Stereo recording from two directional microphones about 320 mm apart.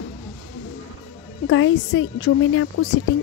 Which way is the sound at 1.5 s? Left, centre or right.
Left.